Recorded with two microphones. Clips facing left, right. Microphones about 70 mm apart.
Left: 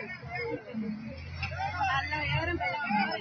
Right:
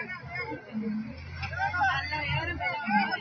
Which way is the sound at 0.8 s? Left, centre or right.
Right.